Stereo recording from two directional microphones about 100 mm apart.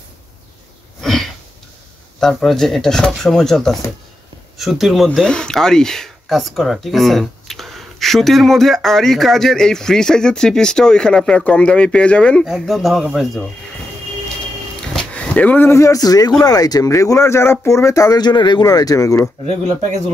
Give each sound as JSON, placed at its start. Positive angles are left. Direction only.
{"t": 1.0, "sound": "sniff", "side_deg": 5}
{"t": 2.1, "sound": "speech", "side_deg": 5}
{"t": 12.4, "sound": "speech", "side_deg": -5}
{"t": 15.0, "sound": "speech", "side_deg": 15}